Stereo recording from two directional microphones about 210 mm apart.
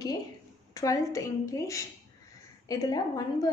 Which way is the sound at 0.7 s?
15° left (ahead or behind).